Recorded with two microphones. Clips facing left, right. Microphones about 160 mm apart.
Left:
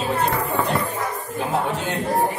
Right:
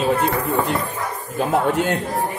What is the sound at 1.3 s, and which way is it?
Speech, 55° right (ahead or behind).